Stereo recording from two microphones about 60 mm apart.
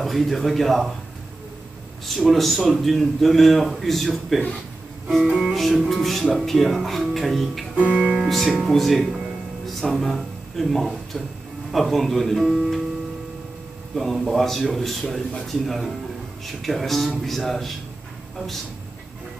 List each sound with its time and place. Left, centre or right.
0.0 s a man's voice: centre
2.0 s a man's voice: centre
5.5 s a man's voice: centre
7.9 s speech: centre
8.2 s a man's voice: centre
13.9 s a man's voice: centre